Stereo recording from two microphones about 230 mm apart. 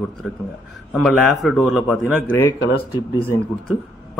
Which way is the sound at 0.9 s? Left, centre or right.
Centre.